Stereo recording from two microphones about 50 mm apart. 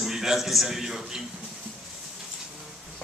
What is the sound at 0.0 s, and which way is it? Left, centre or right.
A man's voice, centre.